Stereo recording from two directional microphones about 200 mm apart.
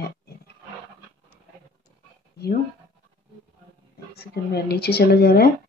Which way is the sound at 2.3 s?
55° left (ahead or behind).